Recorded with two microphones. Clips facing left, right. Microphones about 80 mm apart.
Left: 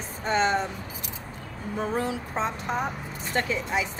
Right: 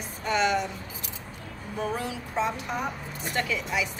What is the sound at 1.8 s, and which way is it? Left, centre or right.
A woman's voice, left.